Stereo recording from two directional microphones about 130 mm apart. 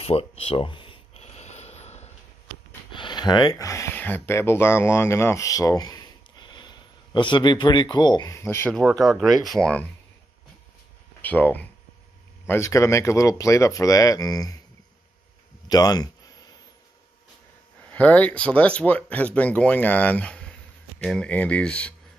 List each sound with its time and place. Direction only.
0.0 s a sound: 50° left (ahead or behind)
2.9 s speech: 35° left (ahead or behind); by 8.7 s 20° left (ahead or behind)
8.9 s speech: centre (ahead or behind)
11.1 s speech: 15° left (ahead or behind)
15.7 s a sound: 30° left (ahead or behind)
17.9 s speech: 10° left (ahead or behind)